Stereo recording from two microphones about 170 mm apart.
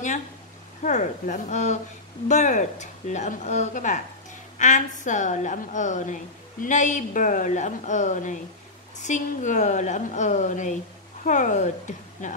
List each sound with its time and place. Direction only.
0.8 s a woman's voice: 45° left (ahead or behind)